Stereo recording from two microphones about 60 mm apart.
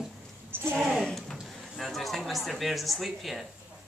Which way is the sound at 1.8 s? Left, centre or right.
Centre.